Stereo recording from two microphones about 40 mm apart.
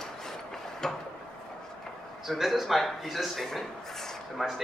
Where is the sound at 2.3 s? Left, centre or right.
Centre.